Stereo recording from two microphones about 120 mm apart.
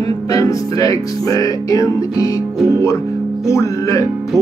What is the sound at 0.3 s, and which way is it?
Speech, 30° left (ahead or behind).